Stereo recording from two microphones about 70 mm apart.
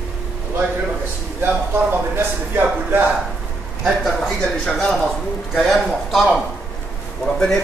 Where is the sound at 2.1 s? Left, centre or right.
Right.